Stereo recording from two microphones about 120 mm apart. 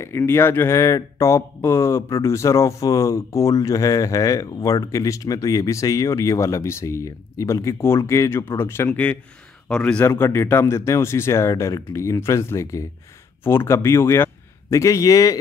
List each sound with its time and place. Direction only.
0.0 s a man's voice: 20° left (ahead or behind); by 10.0 s 5° left (ahead or behind)
10.0 s a man's voice: 20° left (ahead or behind)